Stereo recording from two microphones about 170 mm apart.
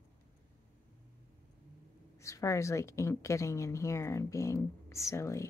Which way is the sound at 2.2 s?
15° left (ahead or behind).